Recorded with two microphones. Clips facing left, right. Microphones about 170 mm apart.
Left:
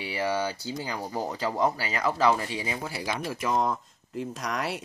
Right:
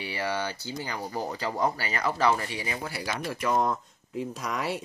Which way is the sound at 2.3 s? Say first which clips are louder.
Left 1 dB; 20° left (ahead or behind).